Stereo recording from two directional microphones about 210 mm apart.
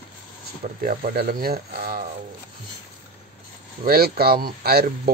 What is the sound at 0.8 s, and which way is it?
Speech, 40° right (ahead or behind).